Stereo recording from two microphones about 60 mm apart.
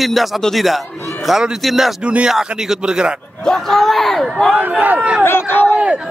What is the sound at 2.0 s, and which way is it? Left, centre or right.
Speech, centre.